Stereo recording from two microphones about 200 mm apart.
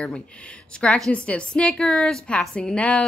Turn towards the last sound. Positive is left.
turn(degrees=5)  # may be behind; listen again after turning